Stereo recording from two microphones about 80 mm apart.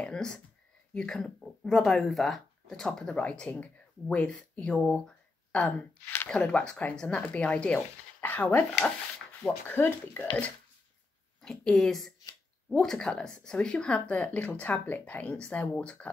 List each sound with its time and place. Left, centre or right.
0.0 s a woman's voice: centre
11.4 s a woman's voice: centre